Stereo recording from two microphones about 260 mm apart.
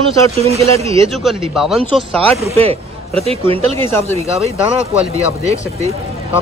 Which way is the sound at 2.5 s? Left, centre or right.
Right.